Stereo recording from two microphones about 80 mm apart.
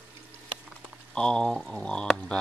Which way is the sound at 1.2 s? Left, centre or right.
Centre.